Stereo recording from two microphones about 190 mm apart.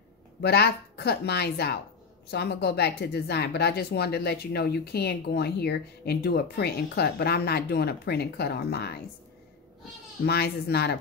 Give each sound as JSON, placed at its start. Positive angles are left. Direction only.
{"t": 0.4, "sound": "speech", "side_deg": 60}
{"t": 10.2, "sound": "speech", "side_deg": 55}